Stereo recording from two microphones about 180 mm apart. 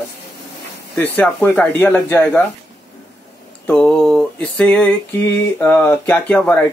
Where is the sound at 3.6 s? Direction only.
5° left (ahead or behind).